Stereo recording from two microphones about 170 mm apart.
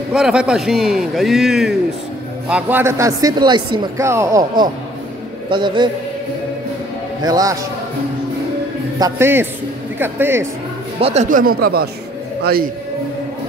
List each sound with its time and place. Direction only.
0.1 s a man's voice: 5° right (ahead or behind); by 5.9 s 25° right (ahead or behind)
7.2 s speech: 20° right (ahead or behind)
9.0 s a man's voice: 15° right (ahead or behind)
11.0 s speech: 35° right (ahead or behind)
11.2 s speech: 55° right (ahead or behind)